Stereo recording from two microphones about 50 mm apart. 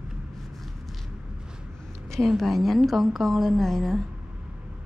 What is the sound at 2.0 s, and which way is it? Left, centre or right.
A woman's voice, centre.